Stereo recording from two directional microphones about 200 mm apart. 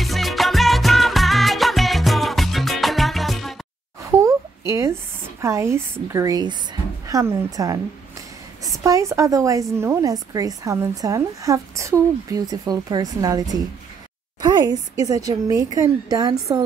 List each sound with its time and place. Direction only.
0.0 s music: centre (ahead or behind)
4.0 s a sound: 15° right (ahead or behind)
5.4 s a woman's voice: 15° right (ahead or behind)